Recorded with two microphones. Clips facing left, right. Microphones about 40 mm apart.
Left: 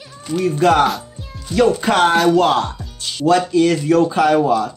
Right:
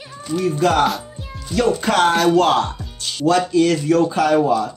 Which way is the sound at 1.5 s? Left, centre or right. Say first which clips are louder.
Left 3 dB; centre.